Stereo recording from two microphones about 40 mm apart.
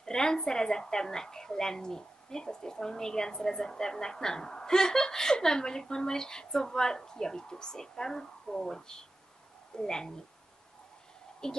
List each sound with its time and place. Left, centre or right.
0.0 s a woman's voice: centre
11.4 s a woman's voice: centre